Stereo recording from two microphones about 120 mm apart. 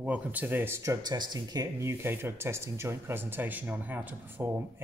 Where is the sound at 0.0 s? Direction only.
10° right (ahead or behind).